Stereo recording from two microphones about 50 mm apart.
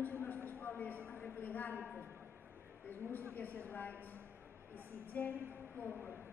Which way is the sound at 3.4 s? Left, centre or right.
Left.